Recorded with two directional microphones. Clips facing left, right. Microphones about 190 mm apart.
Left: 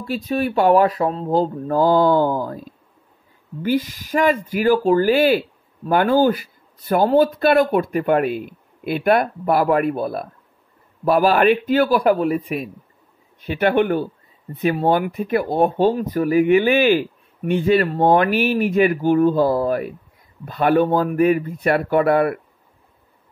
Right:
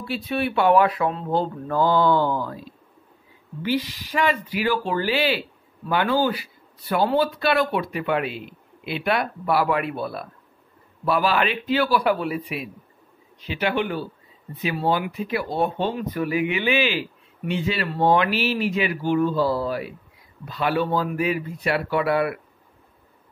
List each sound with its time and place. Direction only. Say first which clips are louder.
0.0 s speech: left 4 dB; 40° left (ahead or behind)